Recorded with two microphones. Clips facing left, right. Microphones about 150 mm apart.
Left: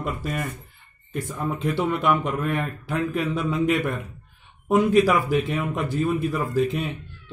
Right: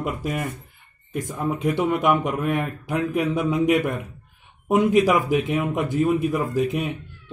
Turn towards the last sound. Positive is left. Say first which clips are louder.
# even
turn(degrees=-15)  # may be behind; listen again after turning